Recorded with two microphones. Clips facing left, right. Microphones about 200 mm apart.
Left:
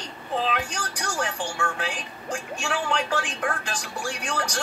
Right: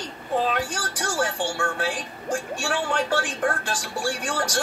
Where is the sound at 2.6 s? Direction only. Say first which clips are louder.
Left 1 dB; 40° right (ahead or behind).